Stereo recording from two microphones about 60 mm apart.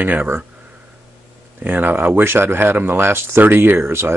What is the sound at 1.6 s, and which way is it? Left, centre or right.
Speech, right.